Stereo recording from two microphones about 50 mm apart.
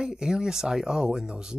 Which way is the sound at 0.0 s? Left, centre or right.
Centre.